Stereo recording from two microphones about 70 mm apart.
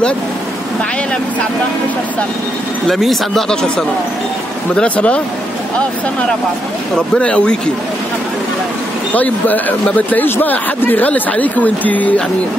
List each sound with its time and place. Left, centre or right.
2.9 s speech: centre
7.2 s speech: centre
9.1 s speech: left